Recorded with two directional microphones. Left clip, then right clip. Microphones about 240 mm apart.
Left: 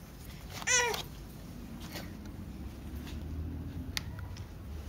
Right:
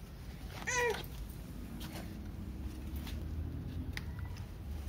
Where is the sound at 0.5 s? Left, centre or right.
Left.